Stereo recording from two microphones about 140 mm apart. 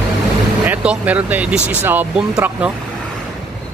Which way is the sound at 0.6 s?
10° right (ahead or behind).